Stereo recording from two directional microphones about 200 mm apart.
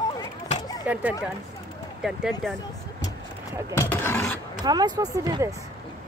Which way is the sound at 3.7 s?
15° left (ahead or behind).